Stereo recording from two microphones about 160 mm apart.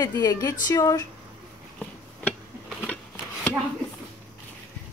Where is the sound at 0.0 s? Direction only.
25° left (ahead or behind).